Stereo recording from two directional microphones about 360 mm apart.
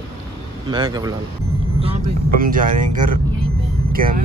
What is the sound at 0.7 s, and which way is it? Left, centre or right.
Speech, centre.